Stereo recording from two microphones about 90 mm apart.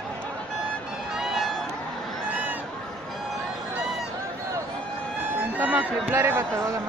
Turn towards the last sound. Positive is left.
turn(degrees=-25)  # may be behind; listen again after turning